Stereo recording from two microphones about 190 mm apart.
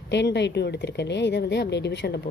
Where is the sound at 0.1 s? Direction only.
65° left (ahead or behind).